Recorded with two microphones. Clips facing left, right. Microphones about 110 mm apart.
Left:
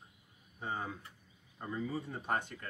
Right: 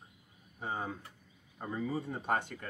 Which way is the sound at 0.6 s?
30° right (ahead or behind).